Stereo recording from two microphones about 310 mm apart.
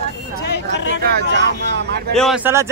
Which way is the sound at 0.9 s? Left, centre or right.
Right.